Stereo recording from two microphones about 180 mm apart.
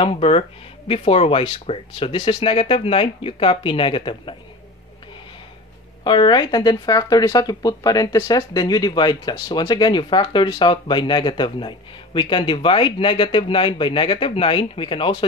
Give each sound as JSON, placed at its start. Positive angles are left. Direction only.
{"t": 0.0, "sound": "speech", "side_deg": 30}
{"t": 6.0, "sound": "speech", "side_deg": 25}